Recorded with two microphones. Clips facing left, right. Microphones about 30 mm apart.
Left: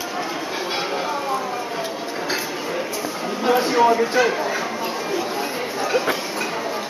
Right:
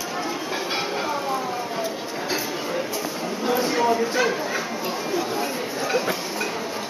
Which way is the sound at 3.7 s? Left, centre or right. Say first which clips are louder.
Left 4 dB; centre.